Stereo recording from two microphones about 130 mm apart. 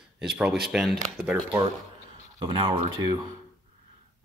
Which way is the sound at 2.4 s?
40° right (ahead or behind).